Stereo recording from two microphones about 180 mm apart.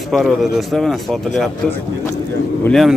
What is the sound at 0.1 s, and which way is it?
A man's voice, centre (ahead or behind).